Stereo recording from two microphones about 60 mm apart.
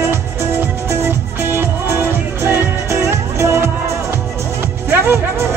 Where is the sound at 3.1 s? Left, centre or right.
Right.